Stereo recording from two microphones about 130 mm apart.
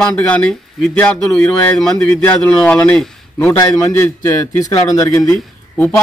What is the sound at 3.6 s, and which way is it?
A man's voice, 20° left (ahead or behind).